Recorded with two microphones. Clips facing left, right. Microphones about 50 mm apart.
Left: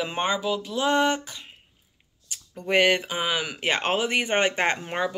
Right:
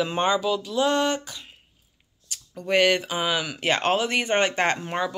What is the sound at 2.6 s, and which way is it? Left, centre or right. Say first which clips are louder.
Speech: even; left.